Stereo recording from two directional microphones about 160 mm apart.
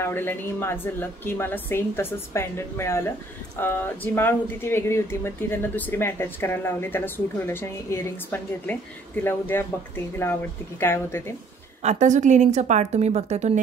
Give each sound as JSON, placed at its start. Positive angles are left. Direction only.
{"t": 0.0, "sound": "speech", "side_deg": 15}
{"t": 11.8, "sound": "a woman's voice", "side_deg": -45}